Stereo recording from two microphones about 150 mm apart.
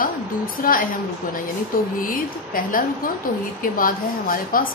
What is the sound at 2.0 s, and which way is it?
A woman's voice, 70° left (ahead or behind).